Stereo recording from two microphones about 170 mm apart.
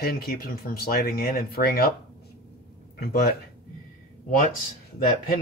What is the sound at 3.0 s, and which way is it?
Speech, 65° left (ahead or behind).